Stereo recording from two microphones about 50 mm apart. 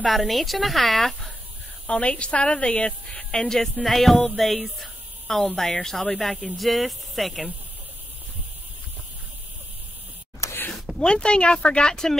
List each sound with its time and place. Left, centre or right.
0.0 s speech: centre
1.9 s a woman's voice: left; by 4.5 s centre
5.6 s speech: centre
11.0 s speech: centre